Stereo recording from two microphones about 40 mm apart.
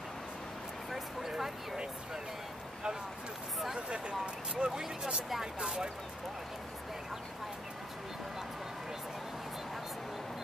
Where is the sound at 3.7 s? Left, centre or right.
Right.